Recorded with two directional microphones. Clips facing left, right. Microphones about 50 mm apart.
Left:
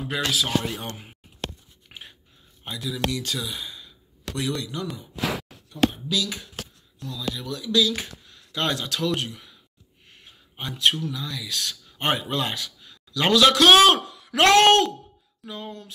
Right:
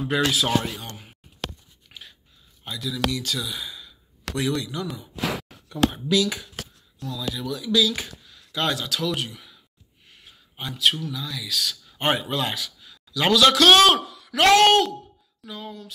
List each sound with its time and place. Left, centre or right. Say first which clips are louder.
0.0 s speech: right 3 dB; centre
0.7 s speech: left 3 dB; left
1.9 s a sound: left 1 dB; left
2.6 s speech: right 1 dB; centre
6.0 s speech: right 5 dB; right
7.0 s speech: right 1 dB; centre
10.2 s a sound: even; centre
11.1 s a man's voice: even; centre